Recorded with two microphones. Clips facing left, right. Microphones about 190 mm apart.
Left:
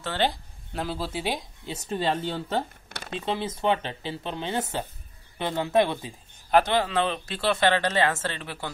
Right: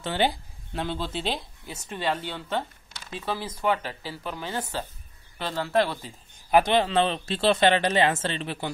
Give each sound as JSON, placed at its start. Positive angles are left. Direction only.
{"t": 0.0, "sound": "speech", "side_deg": -15}
{"t": 0.7, "sound": "speech", "side_deg": 5}
{"t": 1.9, "sound": "speech", "side_deg": 30}
{"t": 2.9, "sound": "a sound", "side_deg": 65}
{"t": 3.2, "sound": "speech", "side_deg": 25}
{"t": 6.5, "sound": "speech", "side_deg": -20}